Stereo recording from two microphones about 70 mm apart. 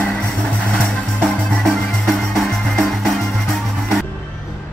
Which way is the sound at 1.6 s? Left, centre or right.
Centre.